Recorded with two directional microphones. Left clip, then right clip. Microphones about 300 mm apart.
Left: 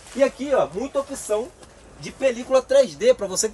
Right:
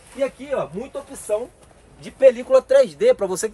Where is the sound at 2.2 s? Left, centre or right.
Centre.